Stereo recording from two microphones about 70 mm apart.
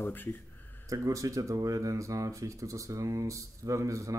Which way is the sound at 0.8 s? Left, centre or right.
Right.